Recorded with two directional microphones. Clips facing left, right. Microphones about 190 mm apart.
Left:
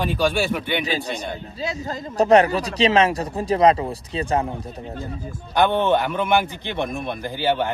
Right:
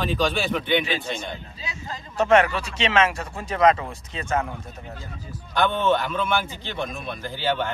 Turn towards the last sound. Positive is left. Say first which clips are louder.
# left 4 dB
turn(degrees=15)  # may be behind; listen again after turning